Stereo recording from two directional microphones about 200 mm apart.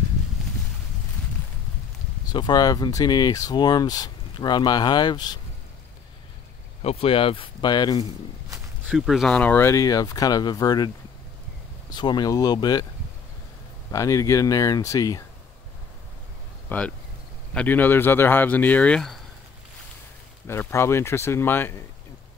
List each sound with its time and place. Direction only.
2.2 s speech: 20° left (ahead or behind)
6.8 s speech: 30° left (ahead or behind)
8.9 s speech: centre (ahead or behind); by 10.9 s 20° left (ahead or behind)
11.9 s speech: 20° left (ahead or behind)
13.9 s speech: 15° left (ahead or behind)
16.6 s speech: 10° left (ahead or behind)
20.4 s speech: 10° left (ahead or behind)